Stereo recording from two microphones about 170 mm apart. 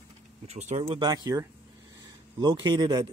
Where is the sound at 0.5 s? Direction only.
40° right (ahead or behind).